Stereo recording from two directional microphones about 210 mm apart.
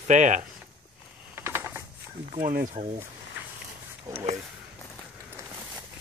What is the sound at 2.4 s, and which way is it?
Speech, 40° right (ahead or behind).